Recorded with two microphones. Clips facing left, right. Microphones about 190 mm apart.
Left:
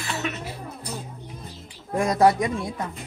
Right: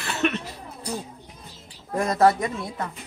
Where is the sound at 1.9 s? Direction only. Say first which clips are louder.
Left 1 dB; 10° left (ahead or behind).